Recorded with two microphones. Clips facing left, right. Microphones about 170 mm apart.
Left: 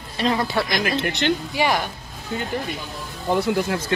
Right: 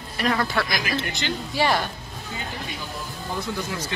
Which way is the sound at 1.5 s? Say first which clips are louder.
Left 1 dB; 15° left (ahead or behind).